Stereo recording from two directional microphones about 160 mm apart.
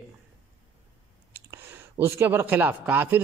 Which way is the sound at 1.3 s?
15° right (ahead or behind).